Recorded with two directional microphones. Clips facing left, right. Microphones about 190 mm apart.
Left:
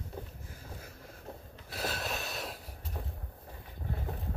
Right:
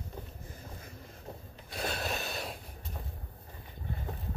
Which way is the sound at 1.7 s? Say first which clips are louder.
Right 1 dB; centre (ahead or behind).